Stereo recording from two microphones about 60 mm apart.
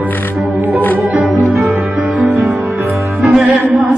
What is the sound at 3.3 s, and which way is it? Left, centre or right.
Music, right.